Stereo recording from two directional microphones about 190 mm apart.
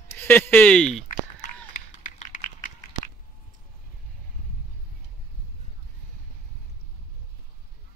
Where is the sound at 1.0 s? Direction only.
45° left (ahead or behind).